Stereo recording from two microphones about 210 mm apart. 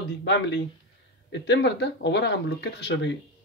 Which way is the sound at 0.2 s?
55° left (ahead or behind).